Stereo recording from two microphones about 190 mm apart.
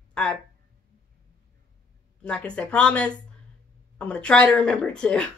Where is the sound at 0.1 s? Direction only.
5° left (ahead or behind).